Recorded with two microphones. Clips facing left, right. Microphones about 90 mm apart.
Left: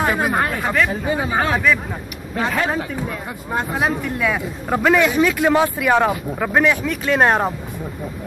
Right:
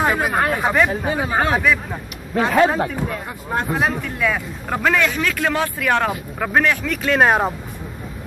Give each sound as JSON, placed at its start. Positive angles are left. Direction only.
{"t": 0.0, "sound": "speech", "side_deg": 0}
{"t": 0.5, "sound": "speech", "side_deg": -20}
{"t": 0.8, "sound": "speech", "side_deg": -5}